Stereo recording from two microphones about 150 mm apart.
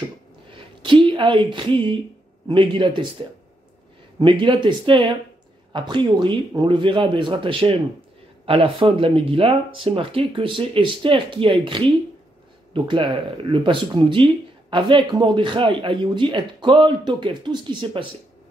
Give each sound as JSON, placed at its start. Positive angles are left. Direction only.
{"t": 0.8, "sound": "speech", "side_deg": -35}
{"t": 4.2, "sound": "speech", "side_deg": -35}